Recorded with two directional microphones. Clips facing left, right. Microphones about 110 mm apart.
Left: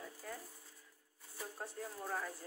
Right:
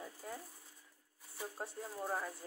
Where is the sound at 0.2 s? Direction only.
20° right (ahead or behind).